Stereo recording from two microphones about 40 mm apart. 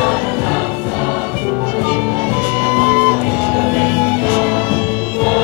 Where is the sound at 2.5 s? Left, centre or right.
Right.